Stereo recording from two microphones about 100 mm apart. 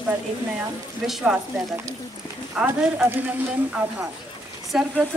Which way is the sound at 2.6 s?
25° right (ahead or behind).